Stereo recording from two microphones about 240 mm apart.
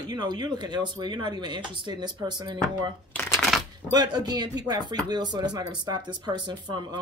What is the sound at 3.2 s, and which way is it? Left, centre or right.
Shuffling cards, centre.